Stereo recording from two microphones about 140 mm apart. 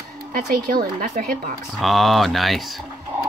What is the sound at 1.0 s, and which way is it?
Speech, 65° right (ahead or behind).